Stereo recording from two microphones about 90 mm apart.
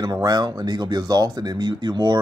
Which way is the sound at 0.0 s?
45° right (ahead or behind).